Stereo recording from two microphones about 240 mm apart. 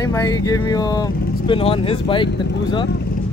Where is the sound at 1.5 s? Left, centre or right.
Left.